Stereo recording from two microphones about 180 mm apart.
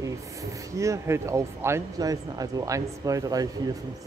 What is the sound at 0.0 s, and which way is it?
Speech, 20° right (ahead or behind).